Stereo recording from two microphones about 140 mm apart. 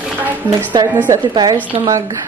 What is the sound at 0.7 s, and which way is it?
A woman's voice, 30° right (ahead or behind).